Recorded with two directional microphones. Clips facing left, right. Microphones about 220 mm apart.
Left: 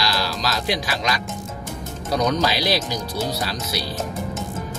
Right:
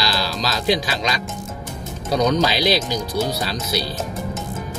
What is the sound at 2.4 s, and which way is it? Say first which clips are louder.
Music: right 3 dB; 20° right (ahead or behind).